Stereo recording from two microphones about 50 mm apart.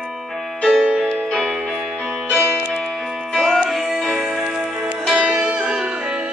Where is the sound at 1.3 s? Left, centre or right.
Centre.